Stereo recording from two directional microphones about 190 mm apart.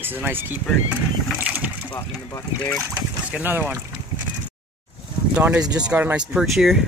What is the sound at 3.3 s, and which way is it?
Speech, 10° right (ahead or behind).